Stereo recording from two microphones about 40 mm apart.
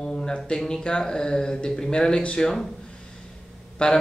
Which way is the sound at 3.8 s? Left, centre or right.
Left.